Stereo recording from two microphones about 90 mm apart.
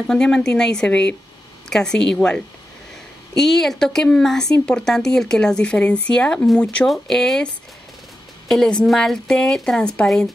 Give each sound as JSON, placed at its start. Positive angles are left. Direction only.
{"t": 0.0, "sound": "speech", "side_deg": 5}